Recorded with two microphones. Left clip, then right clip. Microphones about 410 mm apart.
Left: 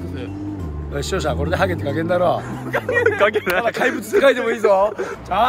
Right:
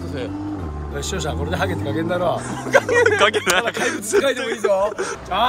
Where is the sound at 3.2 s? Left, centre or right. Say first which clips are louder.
Right 1 dB; centre.